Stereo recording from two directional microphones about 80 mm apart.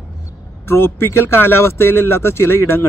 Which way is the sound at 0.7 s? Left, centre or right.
Left.